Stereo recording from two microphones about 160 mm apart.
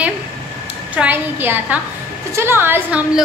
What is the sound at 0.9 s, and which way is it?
A woman's voice, 10° right (ahead or behind).